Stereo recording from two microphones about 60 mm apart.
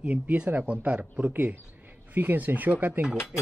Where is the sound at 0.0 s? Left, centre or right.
Right.